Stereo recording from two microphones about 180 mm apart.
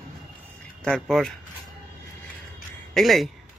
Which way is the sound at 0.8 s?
Centre (ahead or behind).